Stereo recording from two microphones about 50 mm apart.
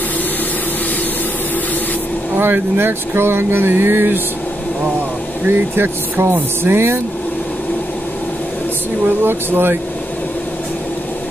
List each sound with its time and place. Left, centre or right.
2.3 s speech: right
5.5 s speech: right
9.0 s speech: right